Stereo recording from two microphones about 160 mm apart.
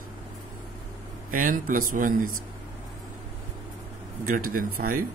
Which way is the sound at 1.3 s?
60° right (ahead or behind).